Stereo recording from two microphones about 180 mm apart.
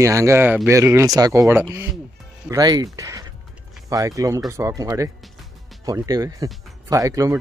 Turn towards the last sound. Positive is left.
turn(degrees=-20)  # may be behind; listen again after turning